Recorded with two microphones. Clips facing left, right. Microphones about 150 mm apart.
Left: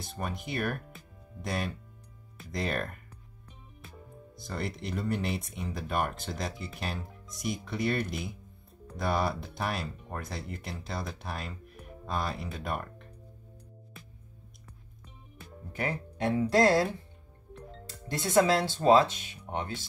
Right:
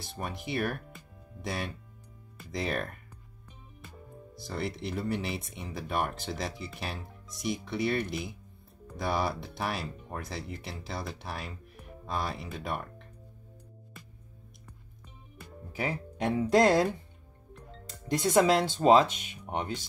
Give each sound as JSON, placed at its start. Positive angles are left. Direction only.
{"t": 0.0, "sound": "speech", "side_deg": 0}
{"t": 4.4, "sound": "speech", "side_deg": 0}
{"t": 15.3, "sound": "speech", "side_deg": -5}
{"t": 17.8, "sound": "speech", "side_deg": -15}